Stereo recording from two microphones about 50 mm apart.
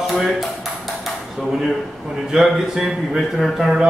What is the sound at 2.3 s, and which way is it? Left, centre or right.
A man's voice, centre.